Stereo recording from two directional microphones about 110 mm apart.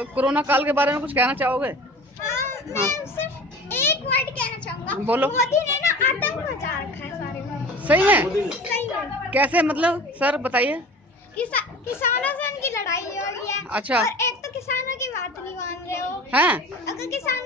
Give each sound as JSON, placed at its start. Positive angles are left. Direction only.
{"t": 0.0, "sound": "a man's voice", "side_deg": -15}
{"t": 2.2, "sound": "children playing", "side_deg": 25}
{"t": 3.7, "sound": "a child's voice", "side_deg": 20}
{"t": 5.0, "sound": "a man's voice", "side_deg": -15}
{"t": 5.4, "sound": "a child's voice", "side_deg": 25}
{"t": 7.8, "sound": "a man's voice", "side_deg": -15}
{"t": 9.3, "sound": "a man's voice", "side_deg": -15}
{"t": 11.3, "sound": "a child's voice", "side_deg": 10}
{"t": 13.7, "sound": "a man's voice", "side_deg": -15}
{"t": 14.0, "sound": "a child's voice", "side_deg": 25}
{"t": 16.3, "sound": "a man's voice", "side_deg": -15}
{"t": 16.9, "sound": "a child's voice", "side_deg": 25}